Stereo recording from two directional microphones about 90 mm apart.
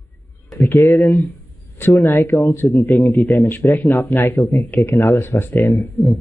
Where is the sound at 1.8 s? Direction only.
35° left (ahead or behind).